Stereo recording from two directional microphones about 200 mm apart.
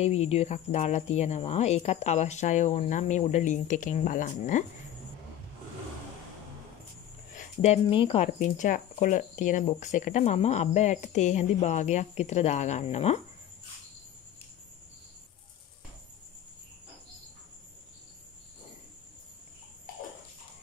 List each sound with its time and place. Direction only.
0.0 s speech: 30° left (ahead or behind)
7.3 s speech: 35° left (ahead or behind)